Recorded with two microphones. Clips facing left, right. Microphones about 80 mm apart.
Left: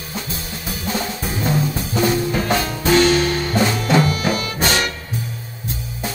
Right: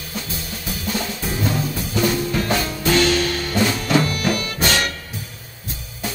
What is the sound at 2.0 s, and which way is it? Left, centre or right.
Music, left.